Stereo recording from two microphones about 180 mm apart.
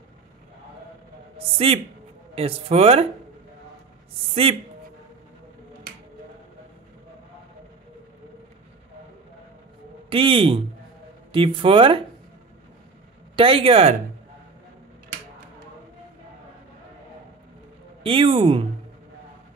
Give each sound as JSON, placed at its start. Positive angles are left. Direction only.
{"t": 1.6, "sound": "speech", "side_deg": -35}
{"t": 4.3, "sound": "speech", "side_deg": -35}
{"t": 10.0, "sound": "speech", "side_deg": -30}
{"t": 13.4, "sound": "speech", "side_deg": -30}
{"t": 18.0, "sound": "speech", "side_deg": -30}